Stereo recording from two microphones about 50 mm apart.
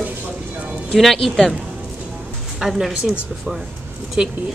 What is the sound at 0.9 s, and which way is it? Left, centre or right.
Speech, centre.